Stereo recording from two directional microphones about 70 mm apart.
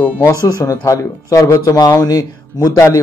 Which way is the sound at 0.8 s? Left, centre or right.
Left.